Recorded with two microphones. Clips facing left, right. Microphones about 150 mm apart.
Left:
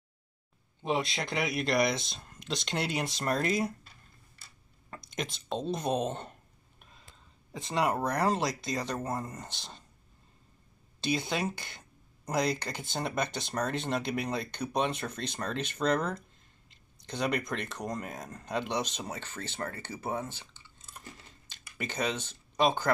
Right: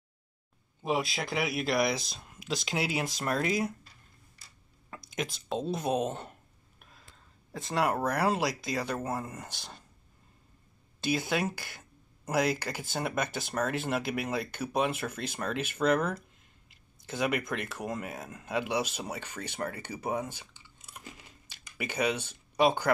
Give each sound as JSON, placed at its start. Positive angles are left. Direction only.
{"t": 0.8, "sound": "speech", "side_deg": -5}
{"t": 4.9, "sound": "speech", "side_deg": -5}
{"t": 7.5, "sound": "speech", "side_deg": 20}
{"t": 8.0, "sound": "speech", "side_deg": -5}
{"t": 9.5, "sound": "speech", "side_deg": 20}
{"t": 11.0, "sound": "speech", "side_deg": -5}